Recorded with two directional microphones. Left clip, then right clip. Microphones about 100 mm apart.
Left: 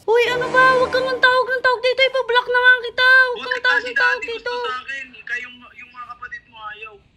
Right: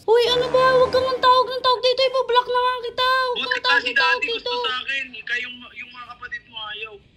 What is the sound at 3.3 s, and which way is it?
A man's voice, 15° left (ahead or behind).